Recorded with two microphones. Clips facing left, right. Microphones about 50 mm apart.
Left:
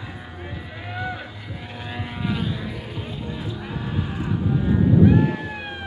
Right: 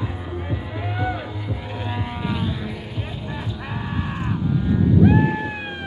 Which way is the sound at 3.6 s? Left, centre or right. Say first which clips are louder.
Right 1 dB; right.